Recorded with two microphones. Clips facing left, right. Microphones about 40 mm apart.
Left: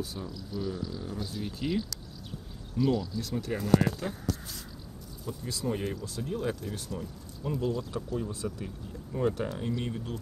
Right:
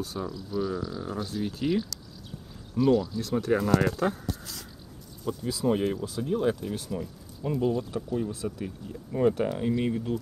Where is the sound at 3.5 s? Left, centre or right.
Right.